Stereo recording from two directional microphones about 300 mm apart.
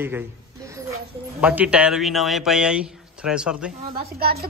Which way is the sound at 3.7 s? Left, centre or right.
Right.